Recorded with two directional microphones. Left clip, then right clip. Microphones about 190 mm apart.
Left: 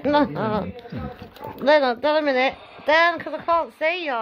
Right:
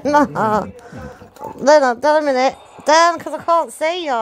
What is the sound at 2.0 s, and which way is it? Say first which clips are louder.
A woman's voice: right 5 dB; 25° right (ahead or behind).